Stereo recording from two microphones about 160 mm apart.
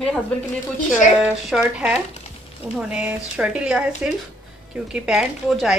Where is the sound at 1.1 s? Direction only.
5° right (ahead or behind).